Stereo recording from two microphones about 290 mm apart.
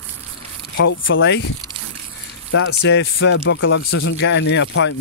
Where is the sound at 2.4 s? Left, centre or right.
Left.